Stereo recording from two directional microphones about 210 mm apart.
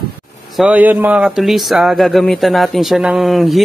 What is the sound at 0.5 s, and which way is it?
Speech, 5° right (ahead or behind).